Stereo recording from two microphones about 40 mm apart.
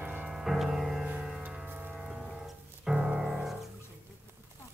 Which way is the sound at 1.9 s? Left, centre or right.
Centre.